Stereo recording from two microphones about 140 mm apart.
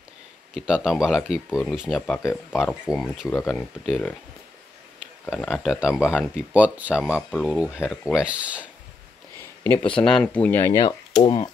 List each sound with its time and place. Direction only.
0.6 s speech: 5° right (ahead or behind)
2.1 s speech: 15° left (ahead or behind)
2.9 s speech: centre (ahead or behind)
3.3 s speech: 20° left (ahead or behind)
3.5 s speech: centre (ahead or behind)
5.3 s speech: centre (ahead or behind)
7.2 s speech: 10° left (ahead or behind)
7.5 s speech: 10° right (ahead or behind)
9.8 s speech: 5° left (ahead or behind)
10.7 s speech: 30° left (ahead or behind)